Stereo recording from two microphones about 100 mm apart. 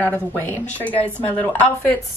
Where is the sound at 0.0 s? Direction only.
20° left (ahead or behind).